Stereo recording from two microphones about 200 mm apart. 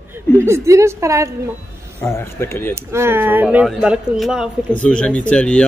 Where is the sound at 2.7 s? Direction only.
15° right (ahead or behind).